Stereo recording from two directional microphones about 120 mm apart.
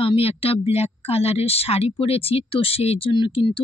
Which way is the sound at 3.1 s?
40° left (ahead or behind).